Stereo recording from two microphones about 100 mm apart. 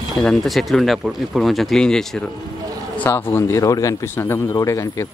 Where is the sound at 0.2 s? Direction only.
5° left (ahead or behind).